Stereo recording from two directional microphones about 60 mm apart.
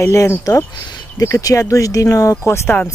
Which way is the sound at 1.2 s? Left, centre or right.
Left.